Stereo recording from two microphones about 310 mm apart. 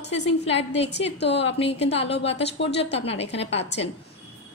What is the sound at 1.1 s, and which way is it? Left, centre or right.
Speech, left.